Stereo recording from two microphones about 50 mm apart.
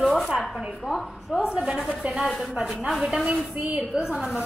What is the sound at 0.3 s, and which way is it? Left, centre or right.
A woman's voice, centre.